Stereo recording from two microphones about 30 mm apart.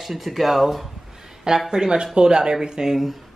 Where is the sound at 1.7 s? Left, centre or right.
Right.